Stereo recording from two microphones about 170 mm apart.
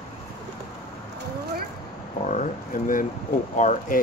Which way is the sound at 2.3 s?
50° left (ahead or behind).